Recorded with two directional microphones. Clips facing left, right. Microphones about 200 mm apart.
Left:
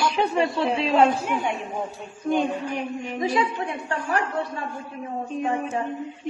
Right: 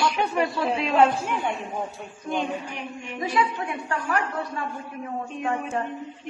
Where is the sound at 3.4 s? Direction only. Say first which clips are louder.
Left 1 dB; 25° left (ahead or behind).